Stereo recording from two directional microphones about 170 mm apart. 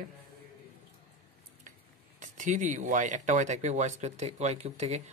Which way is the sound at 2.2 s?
45° right (ahead or behind).